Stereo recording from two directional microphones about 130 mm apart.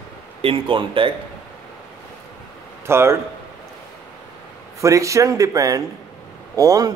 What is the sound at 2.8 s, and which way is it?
Speech, 20° right (ahead or behind).